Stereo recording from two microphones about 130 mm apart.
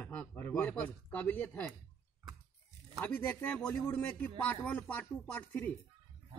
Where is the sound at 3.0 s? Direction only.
15° left (ahead or behind).